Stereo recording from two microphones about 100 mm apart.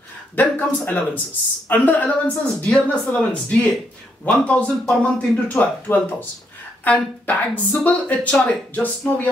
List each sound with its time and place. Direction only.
0.4 s speech: 15° left (ahead or behind)